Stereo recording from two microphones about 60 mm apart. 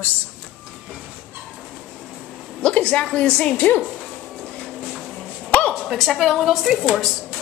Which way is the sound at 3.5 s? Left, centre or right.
Left.